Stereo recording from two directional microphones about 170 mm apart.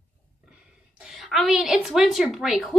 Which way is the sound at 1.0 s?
Centre (ahead or behind).